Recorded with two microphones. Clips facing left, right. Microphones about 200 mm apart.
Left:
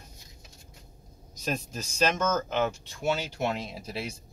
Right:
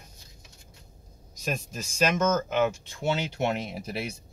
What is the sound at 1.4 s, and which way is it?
Speech, 10° right (ahead or behind).